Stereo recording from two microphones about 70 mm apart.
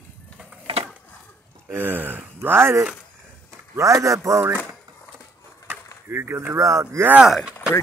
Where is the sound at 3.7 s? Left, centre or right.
Right.